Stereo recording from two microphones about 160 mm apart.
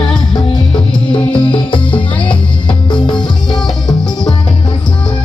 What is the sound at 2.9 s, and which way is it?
Music, 30° left (ahead or behind).